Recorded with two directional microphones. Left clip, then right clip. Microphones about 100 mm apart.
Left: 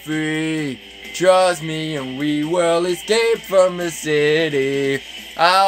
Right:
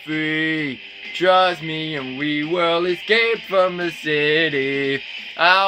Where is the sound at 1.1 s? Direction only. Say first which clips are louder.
Left 2 dB; 35° left (ahead or behind).